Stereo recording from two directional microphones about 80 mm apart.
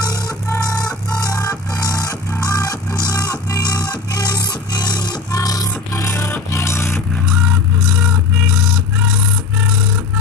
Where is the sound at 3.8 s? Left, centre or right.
Left.